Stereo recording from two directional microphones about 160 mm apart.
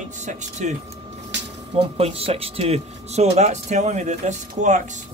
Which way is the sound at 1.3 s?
90° right.